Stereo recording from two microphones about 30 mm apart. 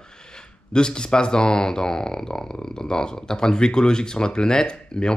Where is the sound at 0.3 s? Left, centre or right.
Left.